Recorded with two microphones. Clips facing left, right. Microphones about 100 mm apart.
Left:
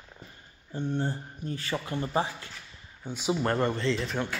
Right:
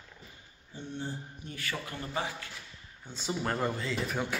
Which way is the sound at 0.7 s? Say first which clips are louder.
Left 9 dB; 60° left (ahead or behind).